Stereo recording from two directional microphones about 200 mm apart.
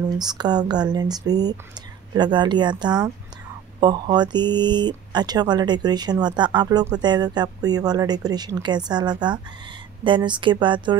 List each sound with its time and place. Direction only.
0.2 s speech: 20° right (ahead or behind)